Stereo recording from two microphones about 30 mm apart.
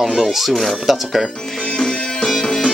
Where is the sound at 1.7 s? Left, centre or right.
Centre.